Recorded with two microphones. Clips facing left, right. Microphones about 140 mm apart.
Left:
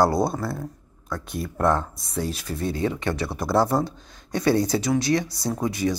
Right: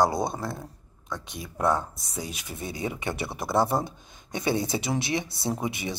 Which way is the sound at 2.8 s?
15° right (ahead or behind).